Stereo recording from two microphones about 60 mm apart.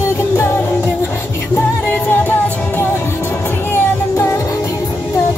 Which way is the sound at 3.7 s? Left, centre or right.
Left.